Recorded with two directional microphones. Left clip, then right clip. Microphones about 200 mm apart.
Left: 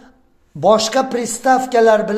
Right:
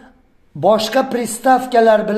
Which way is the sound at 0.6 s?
15° left (ahead or behind).